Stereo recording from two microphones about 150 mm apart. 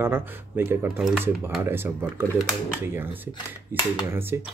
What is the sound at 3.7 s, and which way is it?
Speech, 15° right (ahead or behind).